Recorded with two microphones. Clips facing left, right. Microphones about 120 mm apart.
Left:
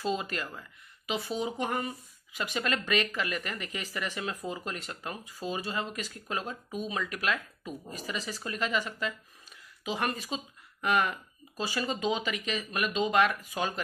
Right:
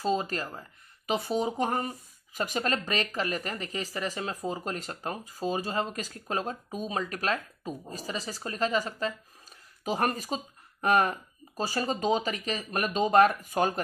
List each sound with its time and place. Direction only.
0.0 s speech: 35° right (ahead or behind)